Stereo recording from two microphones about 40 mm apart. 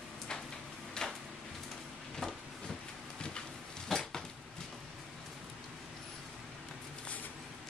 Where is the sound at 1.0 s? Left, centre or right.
Left.